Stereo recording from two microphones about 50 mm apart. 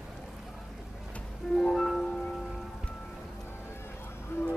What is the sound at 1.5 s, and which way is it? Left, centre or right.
Music, centre.